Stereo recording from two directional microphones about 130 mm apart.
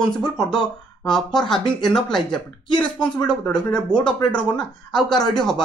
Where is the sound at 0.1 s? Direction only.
5° left (ahead or behind).